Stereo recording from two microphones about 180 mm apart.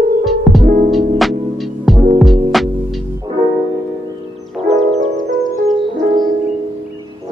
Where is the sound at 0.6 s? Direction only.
50° right (ahead or behind).